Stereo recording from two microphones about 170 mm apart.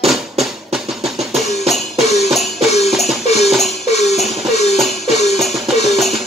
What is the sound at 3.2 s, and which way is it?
Music, 40° left (ahead or behind).